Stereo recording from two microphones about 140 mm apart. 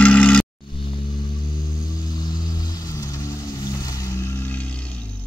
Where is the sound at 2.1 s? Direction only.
30° left (ahead or behind); by 5.0 s 10° left (ahead or behind).